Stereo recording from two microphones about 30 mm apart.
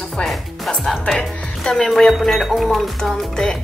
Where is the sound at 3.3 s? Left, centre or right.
Left.